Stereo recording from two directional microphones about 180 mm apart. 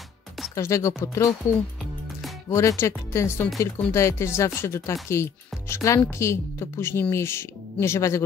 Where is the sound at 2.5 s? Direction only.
15° left (ahead or behind).